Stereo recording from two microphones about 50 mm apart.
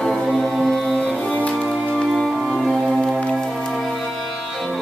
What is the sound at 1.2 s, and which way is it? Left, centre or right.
Music, left.